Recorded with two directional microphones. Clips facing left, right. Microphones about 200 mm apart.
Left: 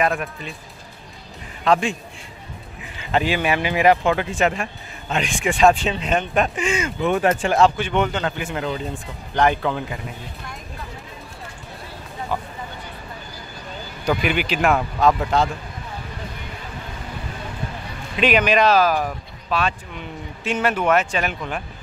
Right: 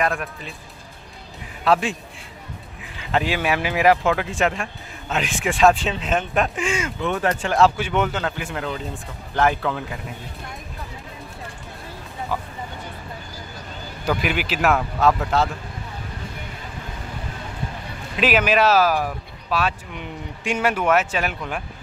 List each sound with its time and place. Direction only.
0.0 s speech: centre (ahead or behind)
1.6 s a man's voice: 5° right (ahead or behind)
7.1 s speech: 15° left (ahead or behind)
7.5 s speech: 5° right (ahead or behind)
12.3 s speech: centre (ahead or behind)
14.0 s speech: 5° right (ahead or behind)
18.1 s speech: 5° right (ahead or behind)